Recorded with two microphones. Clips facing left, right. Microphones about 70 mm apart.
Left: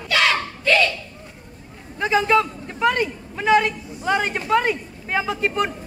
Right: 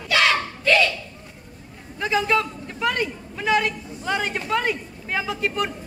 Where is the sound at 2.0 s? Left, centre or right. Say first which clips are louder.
Left 4 dB; left.